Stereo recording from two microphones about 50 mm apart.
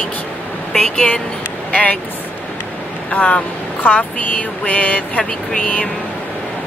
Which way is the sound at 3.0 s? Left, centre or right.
Left.